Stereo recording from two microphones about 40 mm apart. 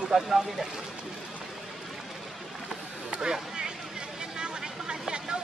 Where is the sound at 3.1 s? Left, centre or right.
Right.